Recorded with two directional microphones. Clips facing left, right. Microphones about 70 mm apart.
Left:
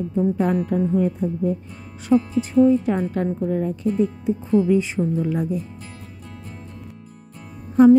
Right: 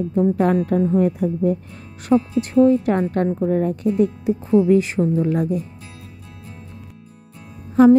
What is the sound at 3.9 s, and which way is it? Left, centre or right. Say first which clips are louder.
Speech: right 3 dB; right.